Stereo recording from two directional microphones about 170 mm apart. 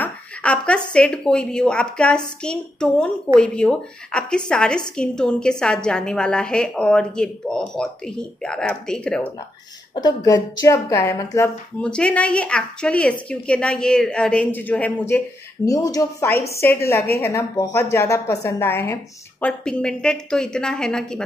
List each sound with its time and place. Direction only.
0.0 s a woman's voice: 5° left (ahead or behind)
9.9 s a woman's voice: 20° left (ahead or behind); by 21.2 s 5° left (ahead or behind)